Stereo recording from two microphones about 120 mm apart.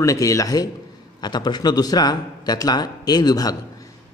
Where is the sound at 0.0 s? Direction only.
25° left (ahead or behind).